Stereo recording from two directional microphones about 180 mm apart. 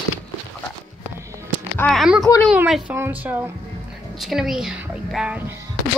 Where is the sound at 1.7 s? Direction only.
Centre (ahead or behind).